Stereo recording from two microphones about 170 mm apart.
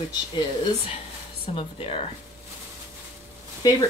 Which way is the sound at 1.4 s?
35° left (ahead or behind).